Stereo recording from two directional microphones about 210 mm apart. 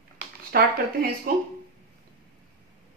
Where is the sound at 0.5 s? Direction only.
45° right (ahead or behind).